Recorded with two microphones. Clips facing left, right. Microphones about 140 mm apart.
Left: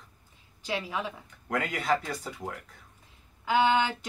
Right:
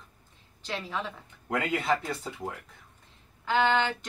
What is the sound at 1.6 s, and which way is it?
Speech, 20° right (ahead or behind).